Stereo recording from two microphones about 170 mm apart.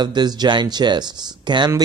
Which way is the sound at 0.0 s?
25° right (ahead or behind).